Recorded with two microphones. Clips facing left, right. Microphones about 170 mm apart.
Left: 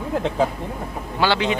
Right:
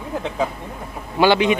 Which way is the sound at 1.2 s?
15° right (ahead or behind).